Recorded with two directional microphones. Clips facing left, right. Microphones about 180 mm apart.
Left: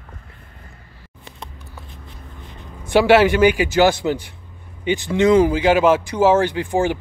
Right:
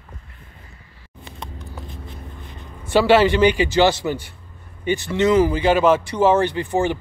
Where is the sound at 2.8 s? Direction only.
10° left (ahead or behind).